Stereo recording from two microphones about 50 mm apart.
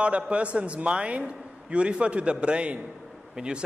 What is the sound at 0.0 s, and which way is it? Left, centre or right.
A man's voice, right.